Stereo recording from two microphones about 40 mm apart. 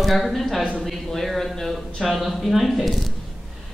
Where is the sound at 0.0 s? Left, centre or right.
Centre.